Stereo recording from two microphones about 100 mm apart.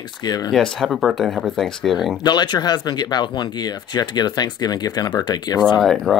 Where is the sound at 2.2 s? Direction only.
45° left (ahead or behind).